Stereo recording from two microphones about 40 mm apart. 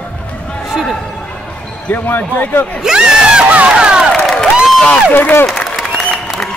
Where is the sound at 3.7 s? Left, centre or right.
Right.